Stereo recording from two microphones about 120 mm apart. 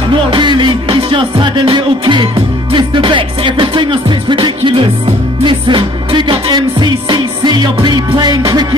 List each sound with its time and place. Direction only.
0.3 s music: 40° right (ahead or behind)